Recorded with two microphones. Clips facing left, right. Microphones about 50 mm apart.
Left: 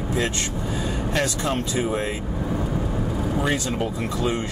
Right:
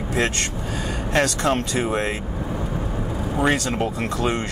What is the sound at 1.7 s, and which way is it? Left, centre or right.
Speech, right.